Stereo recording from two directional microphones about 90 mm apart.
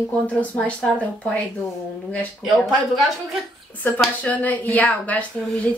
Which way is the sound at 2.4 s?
Centre (ahead or behind).